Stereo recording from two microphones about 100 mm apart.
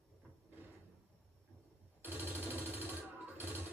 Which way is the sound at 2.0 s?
20° right (ahead or behind).